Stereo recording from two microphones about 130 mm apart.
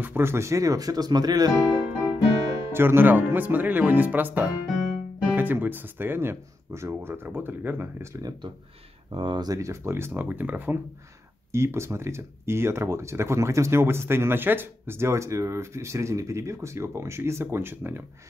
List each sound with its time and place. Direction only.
0.0 s speech: 15° right (ahead or behind)
2.7 s speech: 15° right (ahead or behind)
4.6 s music: centre (ahead or behind)
5.3 s speech: 15° right (ahead or behind)
9.1 s speech: 40° right (ahead or behind); by 18.0 s 15° right (ahead or behind)